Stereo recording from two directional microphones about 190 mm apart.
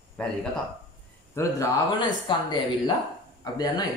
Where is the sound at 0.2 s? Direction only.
5° left (ahead or behind).